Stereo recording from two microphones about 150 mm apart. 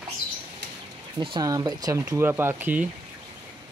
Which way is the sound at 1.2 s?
30° right (ahead or behind).